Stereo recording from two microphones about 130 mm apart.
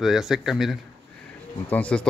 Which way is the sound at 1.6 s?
10° left (ahead or behind).